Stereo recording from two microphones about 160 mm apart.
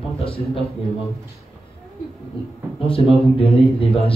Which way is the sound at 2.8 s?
35° left (ahead or behind).